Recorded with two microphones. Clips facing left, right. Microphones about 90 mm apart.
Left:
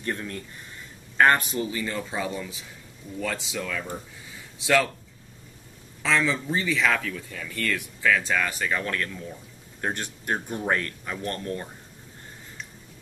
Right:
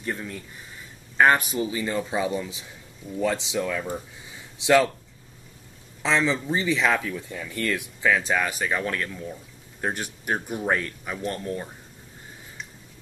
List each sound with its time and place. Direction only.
0.0 s speech: 5° right (ahead or behind); by 4.9 s 20° right (ahead or behind)
6.0 s speech: 20° right (ahead or behind)